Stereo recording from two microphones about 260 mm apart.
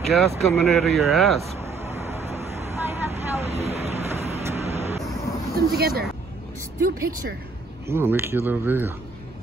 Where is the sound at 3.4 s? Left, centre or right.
Right.